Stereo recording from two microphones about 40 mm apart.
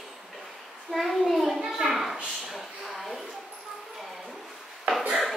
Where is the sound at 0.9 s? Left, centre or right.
Centre.